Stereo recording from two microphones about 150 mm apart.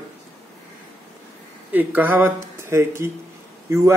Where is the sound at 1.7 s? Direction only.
10° right (ahead or behind).